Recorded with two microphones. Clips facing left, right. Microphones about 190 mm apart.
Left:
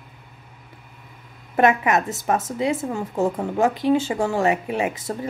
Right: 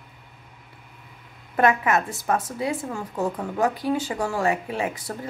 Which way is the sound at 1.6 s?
20° left (ahead or behind).